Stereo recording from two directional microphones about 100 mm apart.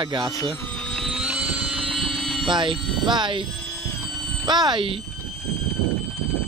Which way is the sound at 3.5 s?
5° left (ahead or behind).